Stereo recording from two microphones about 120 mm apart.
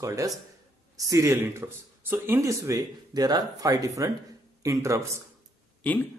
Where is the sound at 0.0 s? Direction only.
25° right (ahead or behind).